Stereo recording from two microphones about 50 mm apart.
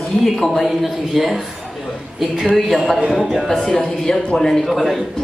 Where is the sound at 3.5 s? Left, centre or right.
Centre.